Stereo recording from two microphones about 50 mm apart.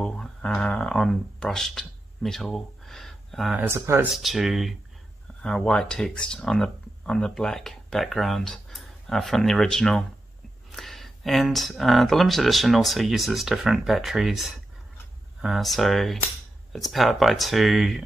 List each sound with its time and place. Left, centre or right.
0.0 s a sound: centre
0.5 s speech: centre
3.6 s speech: right
4.1 s speech: centre
5.4 s speech: centre
15.6 s speech: centre